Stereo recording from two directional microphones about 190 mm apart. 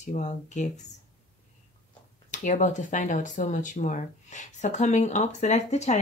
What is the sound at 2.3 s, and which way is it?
Speech, 40° left (ahead or behind).